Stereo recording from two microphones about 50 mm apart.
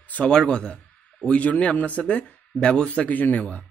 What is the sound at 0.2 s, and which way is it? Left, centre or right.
Speech, centre.